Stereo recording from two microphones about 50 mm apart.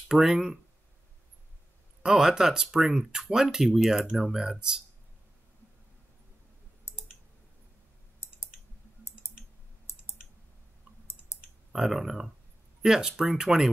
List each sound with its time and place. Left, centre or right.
0.1 s speech: centre
2.0 s speech: centre
6.8 s clicking: left
9.2 s clicking: left
11.7 s speech: centre